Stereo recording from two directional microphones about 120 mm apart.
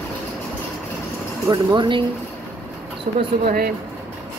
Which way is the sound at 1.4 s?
40° right (ahead or behind).